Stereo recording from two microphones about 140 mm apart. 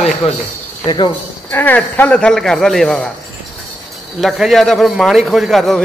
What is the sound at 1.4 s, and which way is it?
A man's voice, 15° left (ahead or behind).